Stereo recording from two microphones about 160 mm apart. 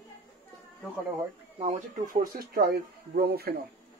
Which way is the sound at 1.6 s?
50° right (ahead or behind).